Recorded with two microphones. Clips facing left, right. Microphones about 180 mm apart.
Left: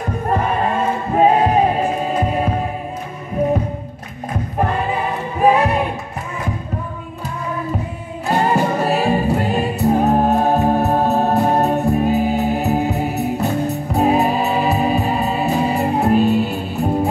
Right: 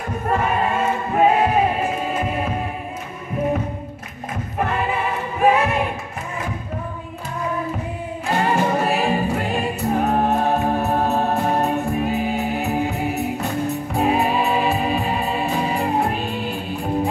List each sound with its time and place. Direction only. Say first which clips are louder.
0.3 s choir: left 1 dB; 35° left (ahead or behind)
5.4 s music: left 3 dB; 35° left (ahead or behind)
8.3 s music: left 3 dB; 40° left (ahead or behind)